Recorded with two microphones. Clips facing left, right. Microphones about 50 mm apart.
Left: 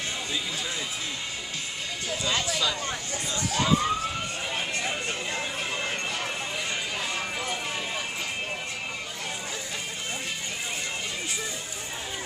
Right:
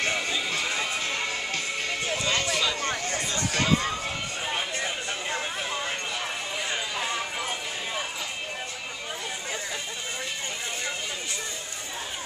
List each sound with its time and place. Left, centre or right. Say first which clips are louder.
0.0 s music: right 4 dB; right
2.8 s chatter: right 3 dB; right
4.5 s a sound: right 1 dB; right